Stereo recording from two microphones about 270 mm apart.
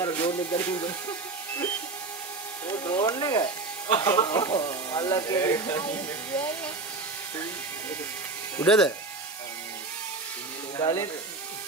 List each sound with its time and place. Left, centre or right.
0.0 s a sound: centre
2.7 s speech: centre
8.5 s speech: centre
10.8 s speech: centre